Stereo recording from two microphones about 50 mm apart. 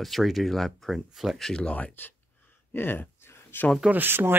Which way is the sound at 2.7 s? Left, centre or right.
Left.